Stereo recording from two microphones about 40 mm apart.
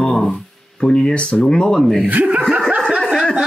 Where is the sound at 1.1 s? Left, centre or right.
Left.